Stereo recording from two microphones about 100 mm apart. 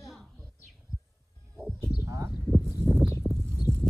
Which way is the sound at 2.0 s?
35° right (ahead or behind).